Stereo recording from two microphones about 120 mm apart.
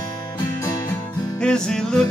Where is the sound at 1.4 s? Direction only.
5° left (ahead or behind).